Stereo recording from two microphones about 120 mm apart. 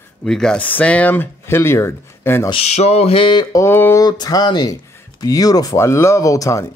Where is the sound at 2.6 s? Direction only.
65° left (ahead or behind); by 4.0 s 20° left (ahead or behind).